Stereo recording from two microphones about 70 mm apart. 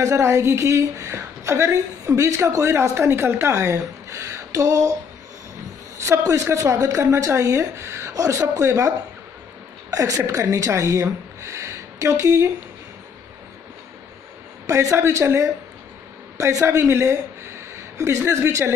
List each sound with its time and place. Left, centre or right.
0.0 s a woman's voice: right
6.2 s a woman's voice: right
14.7 s a woman's voice: right